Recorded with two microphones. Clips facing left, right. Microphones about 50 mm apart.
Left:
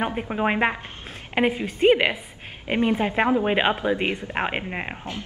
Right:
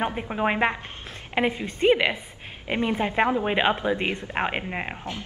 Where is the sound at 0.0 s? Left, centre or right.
Centre.